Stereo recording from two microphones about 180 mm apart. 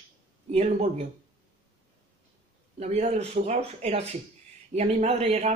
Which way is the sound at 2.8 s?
35° right (ahead or behind).